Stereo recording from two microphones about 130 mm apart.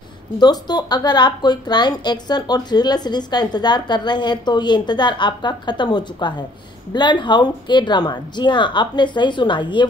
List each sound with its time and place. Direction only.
0.4 s a woman's voice: 35° left (ahead or behind)